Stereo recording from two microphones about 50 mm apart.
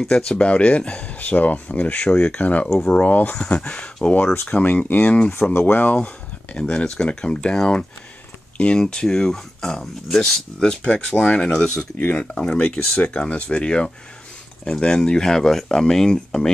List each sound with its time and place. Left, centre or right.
0.1 s speech: left
2.7 s speech: centre
3.0 s speech: left
3.4 s speech: centre
4.6 s speech: left
5.3 s speech: left
5.9 s speech: left
12.0 s speech: left; by 16.4 s centre